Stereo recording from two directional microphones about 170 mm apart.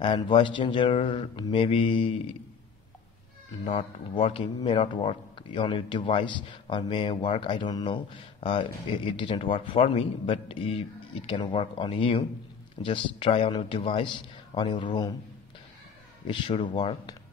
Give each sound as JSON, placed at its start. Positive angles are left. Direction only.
{"t": 0.0, "sound": "speech", "side_deg": 30}
{"t": 3.6, "sound": "speech", "side_deg": 30}
{"t": 16.3, "sound": "speech", "side_deg": 30}